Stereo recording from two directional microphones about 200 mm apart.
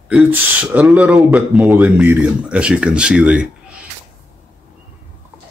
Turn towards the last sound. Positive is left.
turn(degrees=-5)  # may be behind; listen again after turning